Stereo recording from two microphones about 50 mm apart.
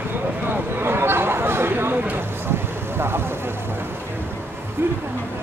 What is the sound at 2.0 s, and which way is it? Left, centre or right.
Vehicle, right.